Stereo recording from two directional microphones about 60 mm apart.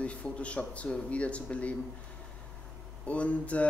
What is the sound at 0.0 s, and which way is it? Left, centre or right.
Speech, left.